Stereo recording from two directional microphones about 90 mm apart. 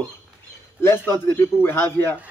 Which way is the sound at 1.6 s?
25° left (ahead or behind).